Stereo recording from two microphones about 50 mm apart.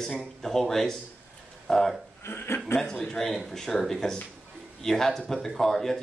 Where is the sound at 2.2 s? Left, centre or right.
Left.